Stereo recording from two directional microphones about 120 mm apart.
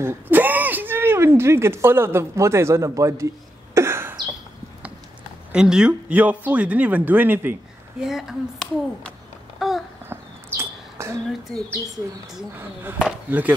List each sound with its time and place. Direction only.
0.0 s speech: 15° right (ahead or behind)
3.7 s a sound: 20° right (ahead or behind)
5.5 s speech: 5° right (ahead or behind)
8.0 s speech: 5° right (ahead or behind)
9.6 s babbling: centre (ahead or behind)
10.6 s a sound: 25° right (ahead or behind)
13.0 s speech: 15° right (ahead or behind)